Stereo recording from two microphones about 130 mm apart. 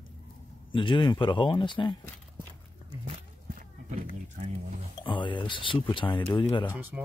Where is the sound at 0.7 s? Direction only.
40° left (ahead or behind).